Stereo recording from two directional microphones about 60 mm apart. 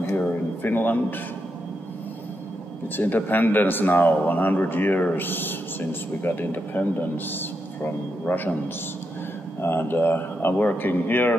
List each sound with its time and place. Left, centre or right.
0.1 s speech: left
3.0 s a man's voice: left
9.6 s a man's voice: left